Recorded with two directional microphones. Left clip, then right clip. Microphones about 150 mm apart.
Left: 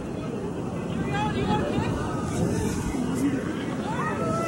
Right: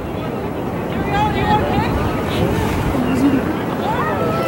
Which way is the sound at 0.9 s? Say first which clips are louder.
Right 10 dB; centre (ahead or behind).